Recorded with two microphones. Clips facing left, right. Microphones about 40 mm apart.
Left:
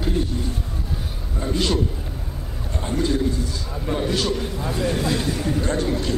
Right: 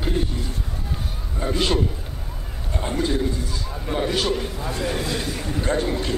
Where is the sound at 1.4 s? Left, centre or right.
Centre.